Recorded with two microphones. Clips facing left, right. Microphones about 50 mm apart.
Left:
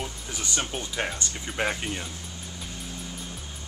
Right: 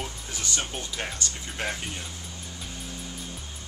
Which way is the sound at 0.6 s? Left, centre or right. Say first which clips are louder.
Left 3 dB; centre.